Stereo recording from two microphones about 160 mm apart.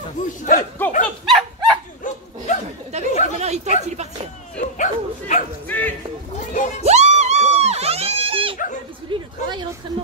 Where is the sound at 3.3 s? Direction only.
45° right (ahead or behind).